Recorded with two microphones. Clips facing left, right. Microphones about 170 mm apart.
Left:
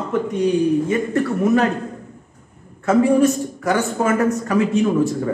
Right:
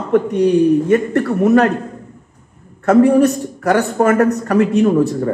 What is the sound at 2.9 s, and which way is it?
Speech, 65° right (ahead or behind).